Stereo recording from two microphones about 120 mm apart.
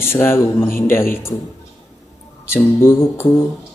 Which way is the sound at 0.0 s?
20° left (ahead or behind).